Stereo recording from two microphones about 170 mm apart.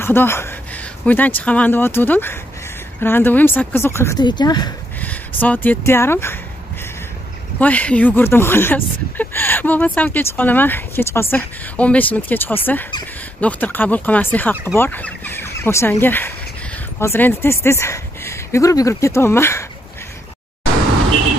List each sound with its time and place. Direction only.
0.0 s speech: 15° left (ahead or behind)
4.2 s speech: 25° left (ahead or behind)
5.0 s speech: 10° left (ahead or behind)
7.6 s speech: 10° left (ahead or behind)